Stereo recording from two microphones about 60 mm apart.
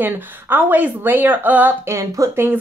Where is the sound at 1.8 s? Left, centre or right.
Right.